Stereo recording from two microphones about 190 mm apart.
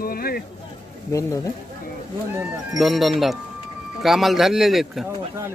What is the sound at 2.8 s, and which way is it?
Speech, centre (ahead or behind).